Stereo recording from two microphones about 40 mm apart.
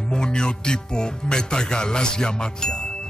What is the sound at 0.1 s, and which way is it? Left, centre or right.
Speech, left.